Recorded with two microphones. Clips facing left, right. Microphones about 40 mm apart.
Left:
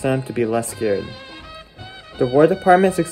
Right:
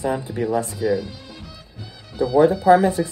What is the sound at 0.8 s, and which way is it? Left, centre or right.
Speech, left.